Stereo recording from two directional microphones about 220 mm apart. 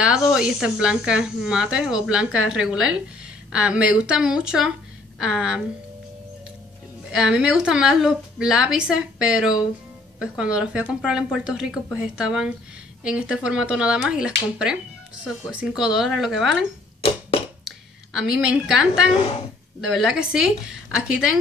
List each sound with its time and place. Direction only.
0.0 s speech: 5° right (ahead or behind)
7.1 s speech: centre (ahead or behind)
17.6 s speech: centre (ahead or behind)